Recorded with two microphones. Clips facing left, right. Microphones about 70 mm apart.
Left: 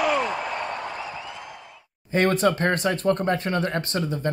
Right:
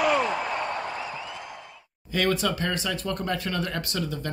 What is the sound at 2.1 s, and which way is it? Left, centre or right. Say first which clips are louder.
Speech: left 5 dB; left.